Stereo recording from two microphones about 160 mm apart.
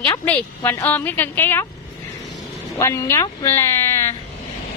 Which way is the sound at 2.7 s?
15° left (ahead or behind).